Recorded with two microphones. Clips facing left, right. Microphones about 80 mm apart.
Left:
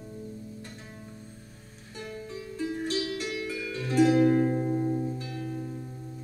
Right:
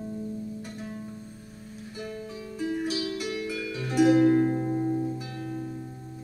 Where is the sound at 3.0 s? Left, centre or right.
Centre.